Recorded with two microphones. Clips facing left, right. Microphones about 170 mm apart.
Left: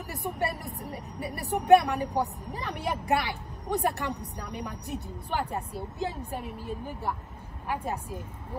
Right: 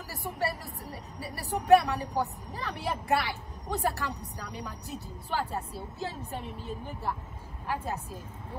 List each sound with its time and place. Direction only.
0.1 s a woman's voice: 20° left (ahead or behind)